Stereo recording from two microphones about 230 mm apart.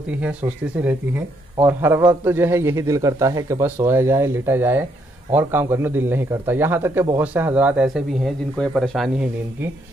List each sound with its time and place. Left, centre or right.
0.2 s speech: centre